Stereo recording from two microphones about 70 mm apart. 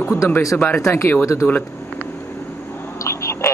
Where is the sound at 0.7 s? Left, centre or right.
Left.